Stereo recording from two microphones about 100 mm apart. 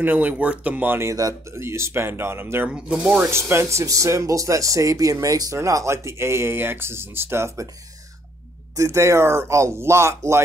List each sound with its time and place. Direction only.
0.0 s speech: 20° right (ahead or behind)
2.7 s speech: 10° right (ahead or behind)
3.2 s speech: 25° right (ahead or behind)
8.7 s speech: 30° right (ahead or behind)